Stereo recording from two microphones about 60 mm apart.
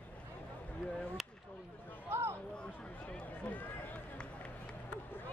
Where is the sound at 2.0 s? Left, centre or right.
Right.